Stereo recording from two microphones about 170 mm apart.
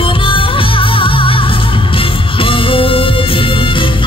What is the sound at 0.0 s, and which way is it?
Music, 30° left (ahead or behind).